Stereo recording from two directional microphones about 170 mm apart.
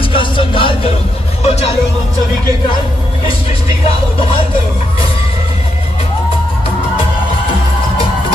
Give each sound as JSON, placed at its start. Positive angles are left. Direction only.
{"t": 0.1, "sound": "music", "side_deg": 30}